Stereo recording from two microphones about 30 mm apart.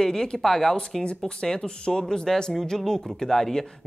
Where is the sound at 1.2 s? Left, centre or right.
Left; by 3.7 s centre.